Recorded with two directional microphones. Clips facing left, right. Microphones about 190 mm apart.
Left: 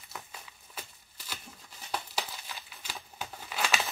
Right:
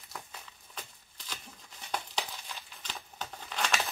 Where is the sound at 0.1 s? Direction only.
5° left (ahead or behind).